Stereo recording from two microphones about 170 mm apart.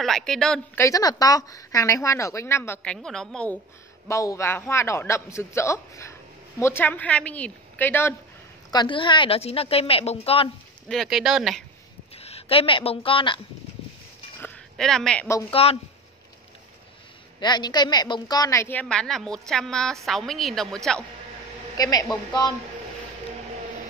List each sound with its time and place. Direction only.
0.0 s a woman's voice: centre (ahead or behind)
0.7 s a woman's voice: 20° left (ahead or behind); by 3.5 s 5° left (ahead or behind)
4.1 s a woman's voice: 20° left (ahead or behind)
8.7 s a woman's voice: 30° left (ahead or behind)
10.9 s a woman's voice: centre (ahead or behind)
12.2 s a woman's voice: 35° left (ahead or behind)
14.4 s a sound: 5° left (ahead or behind)
15.5 s a woman's voice: 35° left (ahead or behind)
17.4 s a woman's voice: 25° left (ahead or behind); by 21.0 s 5° left (ahead or behind)
21.7 s a woman's voice: 20° left (ahead or behind)